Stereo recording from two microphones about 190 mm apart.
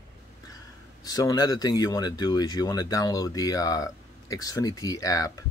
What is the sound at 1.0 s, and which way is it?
Speech, 20° left (ahead or behind).